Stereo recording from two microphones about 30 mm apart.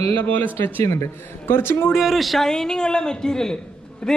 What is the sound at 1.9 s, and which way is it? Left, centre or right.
Speech, centre.